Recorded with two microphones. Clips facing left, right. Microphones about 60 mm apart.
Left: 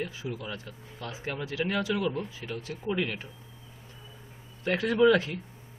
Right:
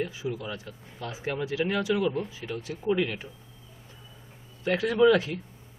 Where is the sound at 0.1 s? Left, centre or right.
Centre.